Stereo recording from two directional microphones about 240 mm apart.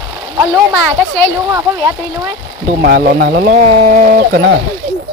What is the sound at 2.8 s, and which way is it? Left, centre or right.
Speech, right.